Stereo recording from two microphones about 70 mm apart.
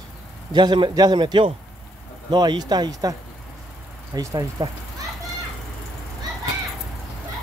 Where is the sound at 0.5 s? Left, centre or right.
Right.